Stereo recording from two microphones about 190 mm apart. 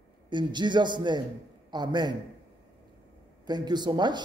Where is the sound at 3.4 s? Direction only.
20° right (ahead or behind).